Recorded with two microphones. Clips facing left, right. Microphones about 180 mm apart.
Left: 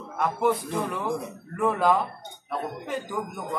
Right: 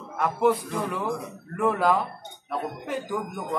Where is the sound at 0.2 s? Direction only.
Centre (ahead or behind).